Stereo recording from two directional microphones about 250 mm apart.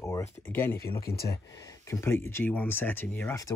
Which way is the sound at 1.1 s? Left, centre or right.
Left.